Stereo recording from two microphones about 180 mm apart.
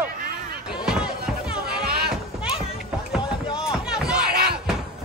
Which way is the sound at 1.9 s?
60° right (ahead or behind).